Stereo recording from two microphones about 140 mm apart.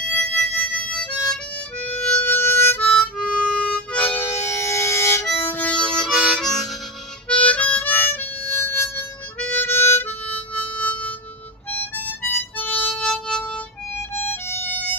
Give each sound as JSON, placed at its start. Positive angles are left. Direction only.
{"t": 0.0, "sound": "harmonica", "side_deg": 10}
{"t": 10.9, "sound": "music", "side_deg": 10}
{"t": 11.7, "sound": "harmonica", "side_deg": 15}
{"t": 13.0, "sound": "music", "side_deg": 5}
{"t": 14.3, "sound": "music", "side_deg": 15}